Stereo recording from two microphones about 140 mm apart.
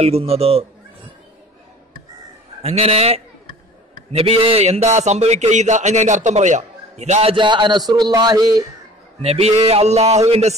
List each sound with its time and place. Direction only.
0.0 s a man's voice: 45° right (ahead or behind)
2.6 s a man's voice: 50° right (ahead or behind)
7.3 s a sound: 35° right (ahead or behind)
9.2 s a man's voice: 45° right (ahead or behind)